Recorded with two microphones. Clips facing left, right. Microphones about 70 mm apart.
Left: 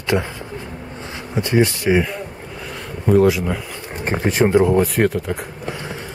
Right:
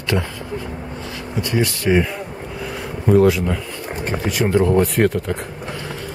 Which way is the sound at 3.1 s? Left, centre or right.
Centre.